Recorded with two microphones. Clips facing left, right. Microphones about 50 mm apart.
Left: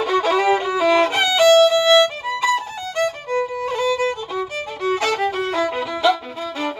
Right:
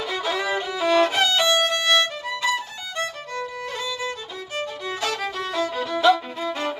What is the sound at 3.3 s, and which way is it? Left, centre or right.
Music, left.